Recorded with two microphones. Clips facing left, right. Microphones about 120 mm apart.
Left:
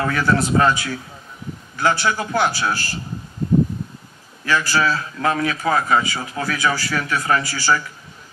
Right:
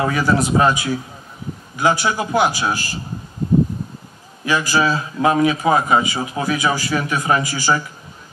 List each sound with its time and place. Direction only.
0.0 s a man's voice: 10° right (ahead or behind)
4.5 s a man's voice: 15° right (ahead or behind)